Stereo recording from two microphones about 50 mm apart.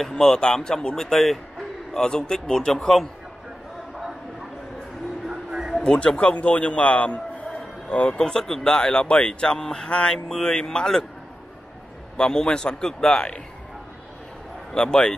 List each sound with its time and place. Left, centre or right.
0.0 s speech: centre
5.9 s a man's voice: centre
8.2 s speech: centre
12.2 s speech: centre
14.7 s speech: centre